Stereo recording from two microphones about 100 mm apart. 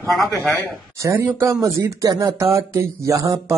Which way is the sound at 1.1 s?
25° right (ahead or behind).